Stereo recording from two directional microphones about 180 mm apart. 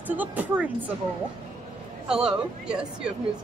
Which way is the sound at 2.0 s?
5° right (ahead or behind).